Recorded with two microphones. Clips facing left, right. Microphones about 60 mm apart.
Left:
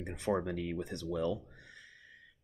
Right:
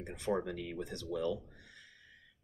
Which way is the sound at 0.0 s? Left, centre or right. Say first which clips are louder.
Left 2 dB; left.